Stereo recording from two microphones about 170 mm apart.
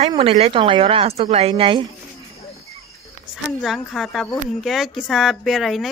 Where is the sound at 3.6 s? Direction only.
Centre (ahead or behind).